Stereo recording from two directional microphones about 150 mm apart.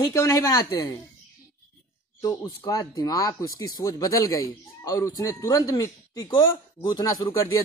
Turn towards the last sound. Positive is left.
turn(degrees=25)  # may be behind; listen again after turning